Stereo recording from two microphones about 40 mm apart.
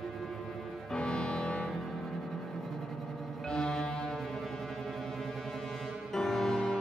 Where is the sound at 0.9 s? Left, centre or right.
Left.